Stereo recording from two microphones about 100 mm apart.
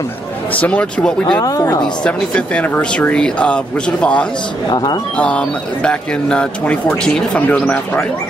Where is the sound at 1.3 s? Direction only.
35° left (ahead or behind).